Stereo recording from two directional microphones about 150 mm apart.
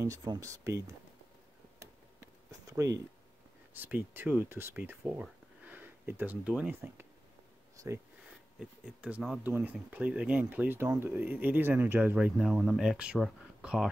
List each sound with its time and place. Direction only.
0.0 s speech: 25° right (ahead or behind)
2.7 s speech: 20° right (ahead or behind)
8.5 s speech: 5° right (ahead or behind)